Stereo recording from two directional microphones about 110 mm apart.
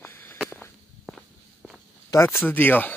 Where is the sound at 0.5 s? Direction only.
15° left (ahead or behind).